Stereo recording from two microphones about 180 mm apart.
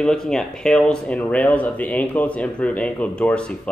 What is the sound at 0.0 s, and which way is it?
Speech, 5° left (ahead or behind).